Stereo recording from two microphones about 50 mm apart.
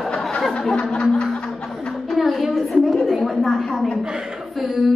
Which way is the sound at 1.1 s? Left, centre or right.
Centre.